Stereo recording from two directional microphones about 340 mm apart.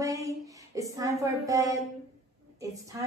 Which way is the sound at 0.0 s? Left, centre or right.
Centre.